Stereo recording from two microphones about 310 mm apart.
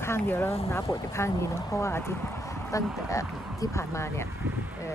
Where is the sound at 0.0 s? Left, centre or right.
Centre.